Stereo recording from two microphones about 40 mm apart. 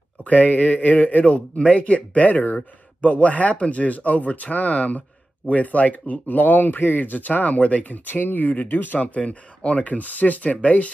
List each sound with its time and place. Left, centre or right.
0.2 s a man's voice: left
9.1 s a man's voice: left